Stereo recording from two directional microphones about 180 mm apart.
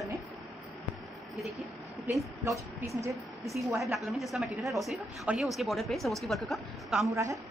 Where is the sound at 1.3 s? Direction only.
Centre (ahead or behind).